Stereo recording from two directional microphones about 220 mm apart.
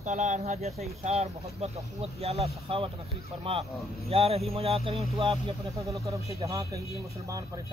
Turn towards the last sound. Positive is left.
turn(degrees=-15)  # may be behind; listen again after turning